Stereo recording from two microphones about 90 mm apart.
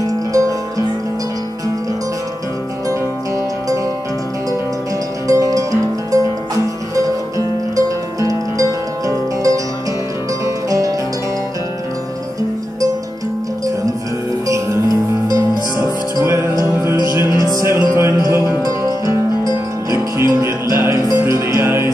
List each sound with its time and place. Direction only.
0.0 s music: 40° right (ahead or behind)
5.3 s music: 40° right (ahead or behind)
10.4 s music: 40° right (ahead or behind)
14.5 s music: 40° right (ahead or behind)
15.8 s music: 30° right (ahead or behind)